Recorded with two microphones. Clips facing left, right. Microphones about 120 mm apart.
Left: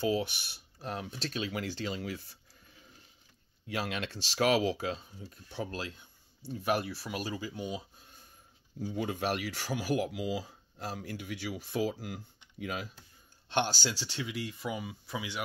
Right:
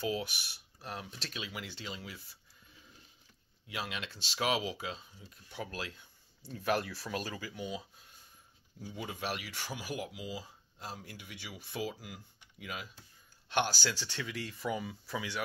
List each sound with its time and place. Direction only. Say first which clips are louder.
0.0 s speech: left 5 dB; 25° left (ahead or behind); by 2.3 s 45° left (ahead or behind)
3.6 s speech: left 5 dB; 45° left (ahead or behind); by 6.0 s 30° left (ahead or behind)
6.5 s speech: left 2 dB; 15° left (ahead or behind)
8.7 s speech: left 8 dB; 45° left (ahead or behind)
14.1 s speech: left 3 dB; 10° left (ahead or behind)